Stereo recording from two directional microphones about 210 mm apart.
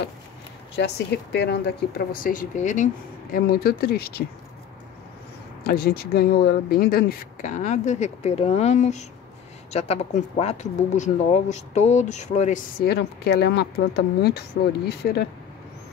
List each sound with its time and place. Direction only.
0.7 s speech: 55° left (ahead or behind)
5.6 s speech: 45° left (ahead or behind)
12.8 s speech: 50° left (ahead or behind)